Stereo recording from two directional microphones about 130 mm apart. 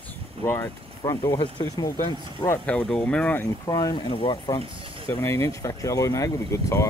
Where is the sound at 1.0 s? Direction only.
30° left (ahead or behind).